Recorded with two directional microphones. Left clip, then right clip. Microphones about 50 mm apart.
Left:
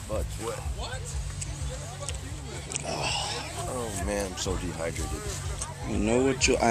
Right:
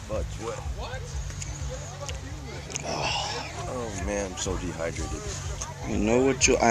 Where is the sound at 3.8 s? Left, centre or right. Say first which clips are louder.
Even; left.